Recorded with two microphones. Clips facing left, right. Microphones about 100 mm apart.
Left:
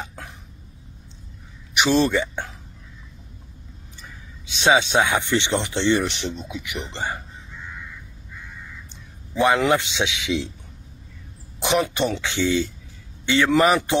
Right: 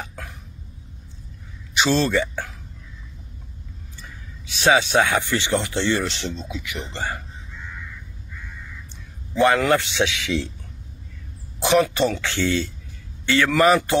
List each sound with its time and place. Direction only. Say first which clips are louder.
0.0 s cough: even; 25° left (ahead or behind)
1.7 s speech: left 1 dB; 15° left (ahead or behind)
4.5 s speech: even; 20° left (ahead or behind)
9.3 s a man's voice: right 1 dB; 15° left (ahead or behind)
11.6 s a man's voice: right 3 dB; 20° left (ahead or behind)